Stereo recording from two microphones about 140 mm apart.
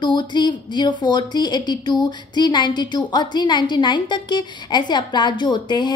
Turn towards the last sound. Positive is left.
turn(degrees=30)  # may be behind; listen again after turning